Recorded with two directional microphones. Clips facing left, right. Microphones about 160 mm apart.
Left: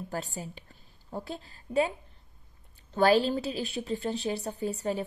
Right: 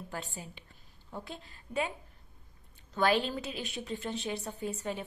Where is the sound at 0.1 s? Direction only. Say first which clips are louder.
Left 5 dB; 40° left (ahead or behind).